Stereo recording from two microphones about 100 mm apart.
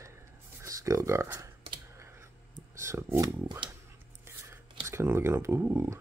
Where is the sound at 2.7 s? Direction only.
30° right (ahead or behind).